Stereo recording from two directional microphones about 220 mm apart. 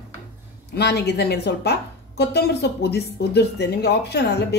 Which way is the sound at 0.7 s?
50° left (ahead or behind).